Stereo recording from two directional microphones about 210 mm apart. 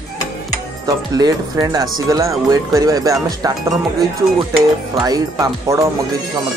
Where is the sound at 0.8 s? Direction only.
15° right (ahead or behind).